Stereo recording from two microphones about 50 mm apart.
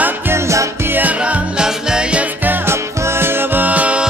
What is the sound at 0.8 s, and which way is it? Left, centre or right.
Music, right.